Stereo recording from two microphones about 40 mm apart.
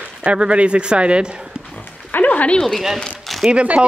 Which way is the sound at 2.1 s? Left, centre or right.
Left.